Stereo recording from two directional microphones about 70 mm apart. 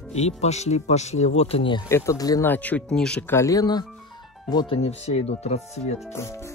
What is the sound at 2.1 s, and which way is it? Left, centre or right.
Speech, left.